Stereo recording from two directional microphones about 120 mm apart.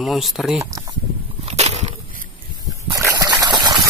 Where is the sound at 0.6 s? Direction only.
25° right (ahead or behind).